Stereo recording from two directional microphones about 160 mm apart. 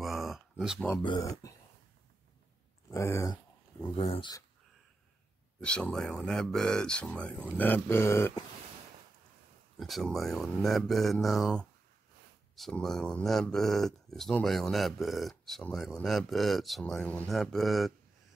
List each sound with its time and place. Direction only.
0.0 s a sound: centre (ahead or behind)
1.0 s speech: 25° left (ahead or behind)
2.9 s speech: 20° left (ahead or behind)
3.8 s speech: 35° left (ahead or behind)
5.6 s speech: 5° left (ahead or behind)
9.8 s speech: centre (ahead or behind)